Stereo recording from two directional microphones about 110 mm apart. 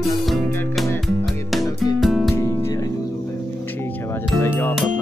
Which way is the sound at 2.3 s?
25° left (ahead or behind).